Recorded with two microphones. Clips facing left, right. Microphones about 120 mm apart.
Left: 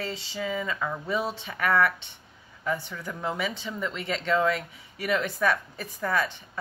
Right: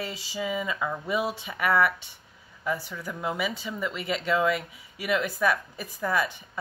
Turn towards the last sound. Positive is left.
turn(degrees=-10)  # may be behind; listen again after turning